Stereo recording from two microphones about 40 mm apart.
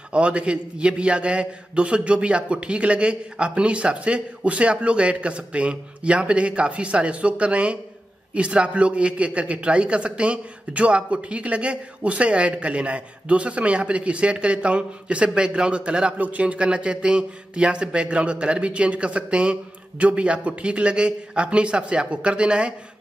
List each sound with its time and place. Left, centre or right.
0.1 s speech: right
16.2 s speech: right